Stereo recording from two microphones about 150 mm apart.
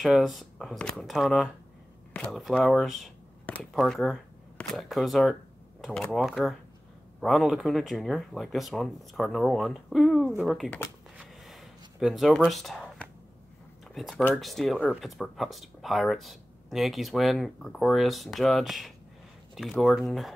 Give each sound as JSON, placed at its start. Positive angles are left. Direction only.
{"t": 0.0, "sound": "speech", "side_deg": 0}
{"t": 11.1, "sound": "a sound", "side_deg": 0}
{"t": 13.9, "sound": "speech", "side_deg": 0}